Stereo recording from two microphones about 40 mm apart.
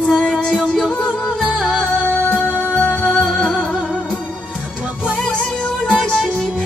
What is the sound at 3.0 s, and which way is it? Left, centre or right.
Music, centre.